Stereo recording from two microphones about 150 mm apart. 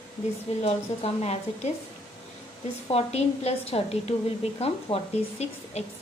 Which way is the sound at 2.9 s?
45° left (ahead or behind).